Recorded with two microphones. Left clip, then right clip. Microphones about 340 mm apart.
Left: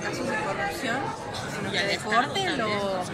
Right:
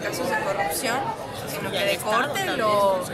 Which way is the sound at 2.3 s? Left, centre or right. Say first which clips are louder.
Right 4 dB; right.